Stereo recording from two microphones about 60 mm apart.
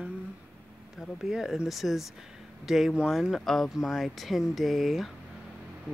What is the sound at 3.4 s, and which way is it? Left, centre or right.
Speech, centre.